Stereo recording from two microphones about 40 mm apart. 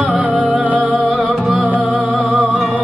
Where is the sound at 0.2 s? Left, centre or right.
Right.